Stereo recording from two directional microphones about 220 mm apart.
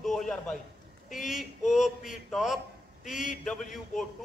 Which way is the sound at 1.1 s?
Centre (ahead or behind).